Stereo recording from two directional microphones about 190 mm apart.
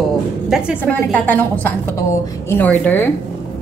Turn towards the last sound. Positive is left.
turn(degrees=10)  # may be behind; listen again after turning